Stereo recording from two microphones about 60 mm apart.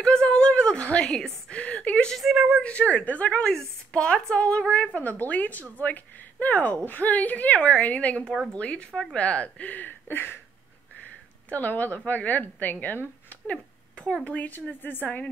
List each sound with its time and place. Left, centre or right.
0.0 s a sound: centre
2.1 s a woman's voice: centre
2.6 s a woman's voice: centre; by 10.4 s left
11.4 s a woman's voice: left
13.5 s a sound: centre
14.2 s a woman's voice: left